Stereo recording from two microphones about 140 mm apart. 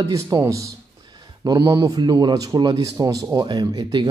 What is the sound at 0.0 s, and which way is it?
Speech, 25° right (ahead or behind).